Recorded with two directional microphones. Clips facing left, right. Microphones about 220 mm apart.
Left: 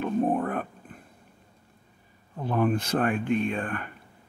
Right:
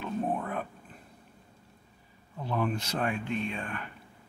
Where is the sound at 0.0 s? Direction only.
50° left (ahead or behind).